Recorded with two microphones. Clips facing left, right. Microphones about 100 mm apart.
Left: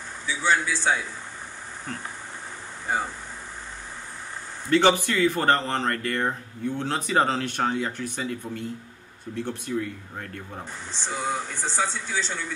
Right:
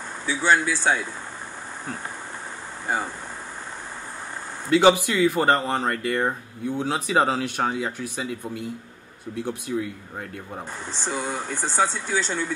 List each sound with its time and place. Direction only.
0.3 s a man's voice: 55° right (ahead or behind)
4.6 s speech: 10° right (ahead or behind)
10.9 s speech: 50° right (ahead or behind)